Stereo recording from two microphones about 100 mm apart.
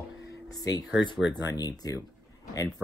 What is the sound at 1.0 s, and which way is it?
Speech, 45° left (ahead or behind).